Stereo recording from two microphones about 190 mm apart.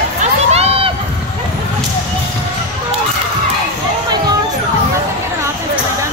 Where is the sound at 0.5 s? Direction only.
35° right (ahead or behind).